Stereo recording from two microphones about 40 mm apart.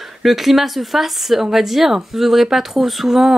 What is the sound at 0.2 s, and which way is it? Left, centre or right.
Speech, centre.